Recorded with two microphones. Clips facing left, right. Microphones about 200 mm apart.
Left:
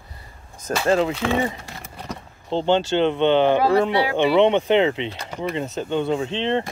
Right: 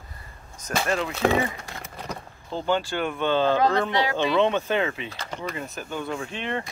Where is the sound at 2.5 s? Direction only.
25° left (ahead or behind).